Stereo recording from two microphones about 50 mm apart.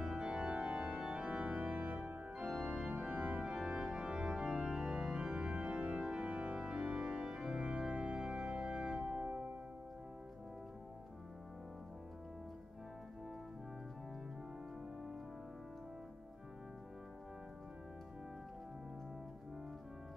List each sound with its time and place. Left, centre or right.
0.0 s organ: centre
9.2 s music: right